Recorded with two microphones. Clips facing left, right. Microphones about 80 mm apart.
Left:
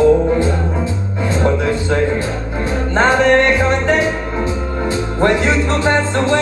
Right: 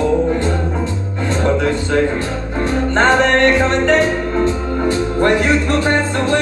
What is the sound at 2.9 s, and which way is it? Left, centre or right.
Music, centre.